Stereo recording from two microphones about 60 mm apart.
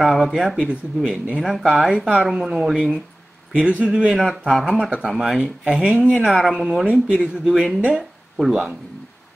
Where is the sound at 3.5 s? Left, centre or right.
Right.